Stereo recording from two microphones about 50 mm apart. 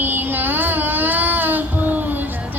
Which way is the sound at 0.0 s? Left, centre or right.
Right.